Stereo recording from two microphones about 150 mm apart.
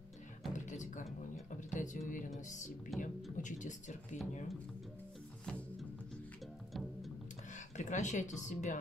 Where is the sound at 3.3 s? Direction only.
55° left (ahead or behind).